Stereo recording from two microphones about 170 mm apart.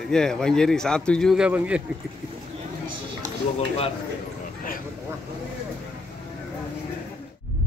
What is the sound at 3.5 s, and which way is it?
Speech, 35° left (ahead or behind).